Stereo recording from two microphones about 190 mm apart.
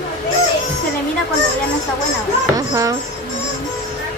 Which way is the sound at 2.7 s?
15° right (ahead or behind).